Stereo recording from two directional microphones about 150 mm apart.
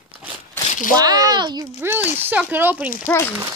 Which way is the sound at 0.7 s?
60° left (ahead or behind).